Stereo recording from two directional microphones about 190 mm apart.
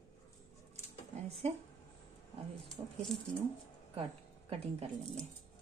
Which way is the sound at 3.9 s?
30° right (ahead or behind).